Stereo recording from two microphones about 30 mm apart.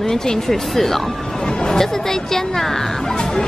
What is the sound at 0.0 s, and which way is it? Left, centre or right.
Speech, centre.